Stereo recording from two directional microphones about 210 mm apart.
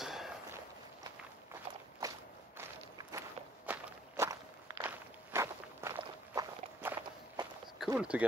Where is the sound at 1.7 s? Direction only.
30° right (ahead or behind).